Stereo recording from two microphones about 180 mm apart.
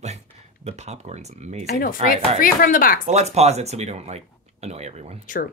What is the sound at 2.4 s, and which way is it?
Speech, 50° left (ahead or behind).